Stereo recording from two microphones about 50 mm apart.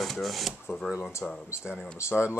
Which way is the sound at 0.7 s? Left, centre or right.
Left.